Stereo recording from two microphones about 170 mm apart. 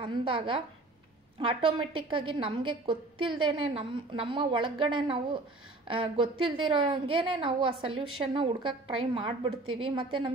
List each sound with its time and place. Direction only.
0.0 s a woman's voice: 30° right (ahead or behind)